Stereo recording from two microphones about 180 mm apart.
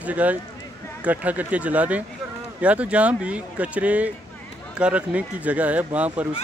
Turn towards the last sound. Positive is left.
turn(degrees=-10)  # may be behind; listen again after turning